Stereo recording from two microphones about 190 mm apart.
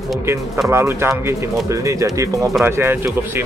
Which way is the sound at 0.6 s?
15° right (ahead or behind).